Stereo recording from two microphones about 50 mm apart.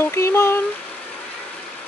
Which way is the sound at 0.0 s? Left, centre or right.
Left.